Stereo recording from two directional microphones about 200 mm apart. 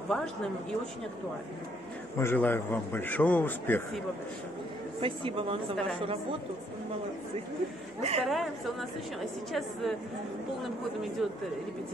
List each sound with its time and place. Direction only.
0.1 s a woman's voice: centre (ahead or behind)
2.1 s a man's voice: 10° left (ahead or behind)
5.0 s a woman's voice: 25° right (ahead or behind)
8.0 s speech: 30° right (ahead or behind)
9.2 s a woman's voice: centre (ahead or behind)